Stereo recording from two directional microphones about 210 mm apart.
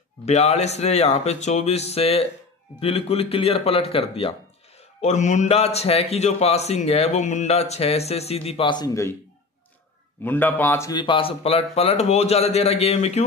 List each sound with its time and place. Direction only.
0.2 s a man's voice: 30° left (ahead or behind); by 9.1 s 15° left (ahead or behind)
10.2 s speech: 10° left (ahead or behind); by 13.2 s 30° left (ahead or behind)